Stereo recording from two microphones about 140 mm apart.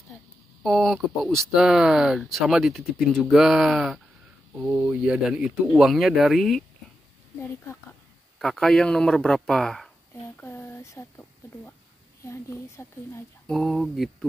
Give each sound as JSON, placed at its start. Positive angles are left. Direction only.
{"t": 0.6, "sound": "speech", "side_deg": 0}
{"t": 8.4, "sound": "speech", "side_deg": 5}
{"t": 10.3, "sound": "speech", "side_deg": 15}
{"t": 13.5, "sound": "speech", "side_deg": 0}